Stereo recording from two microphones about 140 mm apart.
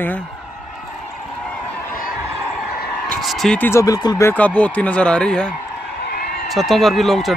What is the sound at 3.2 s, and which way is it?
Fowl, centre (ahead or behind).